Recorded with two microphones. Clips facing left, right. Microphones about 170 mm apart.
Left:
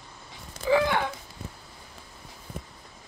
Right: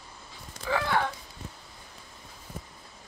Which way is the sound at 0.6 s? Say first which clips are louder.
Left 5 dB; 15° left (ahead or behind).